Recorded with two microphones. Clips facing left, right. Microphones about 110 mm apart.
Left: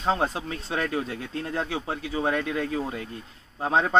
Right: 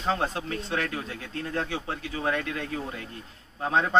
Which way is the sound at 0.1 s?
15° left (ahead or behind).